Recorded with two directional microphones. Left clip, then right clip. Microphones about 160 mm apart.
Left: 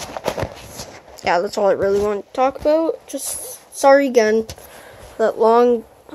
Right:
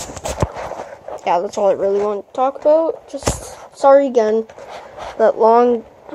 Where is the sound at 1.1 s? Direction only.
15° left (ahead or behind).